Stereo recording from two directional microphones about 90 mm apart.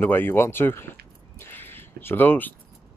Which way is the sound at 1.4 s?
25° left (ahead or behind).